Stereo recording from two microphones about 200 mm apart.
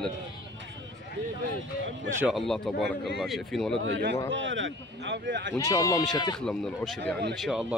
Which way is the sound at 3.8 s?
60° right (ahead or behind).